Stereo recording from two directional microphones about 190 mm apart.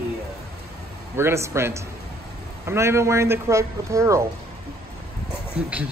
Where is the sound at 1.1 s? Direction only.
15° right (ahead or behind).